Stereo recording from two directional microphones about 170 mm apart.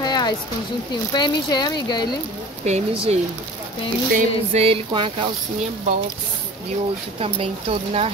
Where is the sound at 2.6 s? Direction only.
35° right (ahead or behind).